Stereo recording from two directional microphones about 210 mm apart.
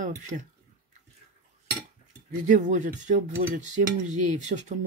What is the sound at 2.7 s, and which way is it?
Speech, 35° right (ahead or behind).